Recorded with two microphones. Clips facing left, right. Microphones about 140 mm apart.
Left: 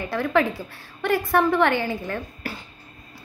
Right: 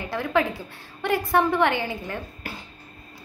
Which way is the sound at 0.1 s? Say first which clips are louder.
Left 2 dB; 15° right (ahead or behind).